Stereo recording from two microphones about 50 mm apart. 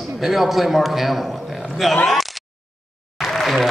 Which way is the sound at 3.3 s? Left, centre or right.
Centre.